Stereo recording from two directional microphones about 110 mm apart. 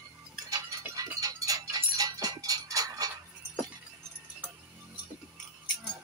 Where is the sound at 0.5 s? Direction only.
30° right (ahead or behind).